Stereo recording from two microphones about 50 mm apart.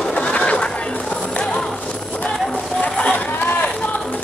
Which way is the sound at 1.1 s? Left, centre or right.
Left.